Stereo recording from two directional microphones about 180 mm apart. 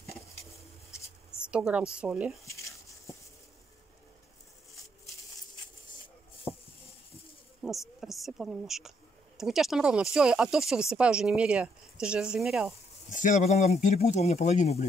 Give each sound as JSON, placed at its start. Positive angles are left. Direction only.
{"t": 1.4, "sound": "speech", "side_deg": -5}
{"t": 2.4, "sound": "a sound", "side_deg": 15}
{"t": 7.6, "sound": "speech", "side_deg": 0}
{"t": 13.1, "sound": "speech", "side_deg": 45}